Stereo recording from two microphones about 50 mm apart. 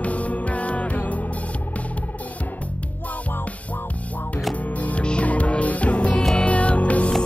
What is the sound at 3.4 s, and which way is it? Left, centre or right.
Music, left.